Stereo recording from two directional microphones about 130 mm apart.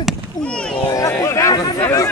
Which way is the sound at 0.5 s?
10° left (ahead or behind).